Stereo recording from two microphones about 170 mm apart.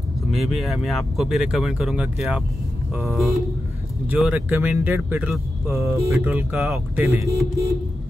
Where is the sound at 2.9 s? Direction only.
15° right (ahead or behind).